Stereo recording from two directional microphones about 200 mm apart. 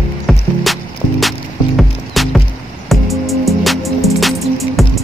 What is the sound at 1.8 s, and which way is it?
Music, centre (ahead or behind).